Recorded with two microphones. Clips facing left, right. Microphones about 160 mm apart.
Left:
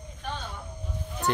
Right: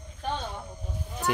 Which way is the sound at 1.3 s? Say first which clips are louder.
Even; 10° right (ahead or behind).